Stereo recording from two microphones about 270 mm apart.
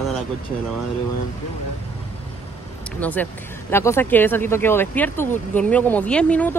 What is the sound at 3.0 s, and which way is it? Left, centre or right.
Speech, centre.